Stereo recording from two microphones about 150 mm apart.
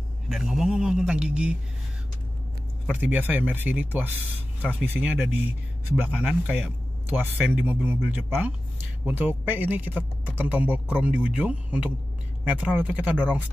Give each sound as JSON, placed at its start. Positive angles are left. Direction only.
{"t": 0.3, "sound": "a man's voice", "side_deg": -5}
{"t": 2.9, "sound": "speech", "side_deg": -10}